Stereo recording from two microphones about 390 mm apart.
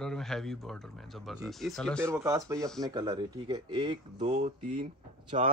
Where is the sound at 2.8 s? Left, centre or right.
Centre.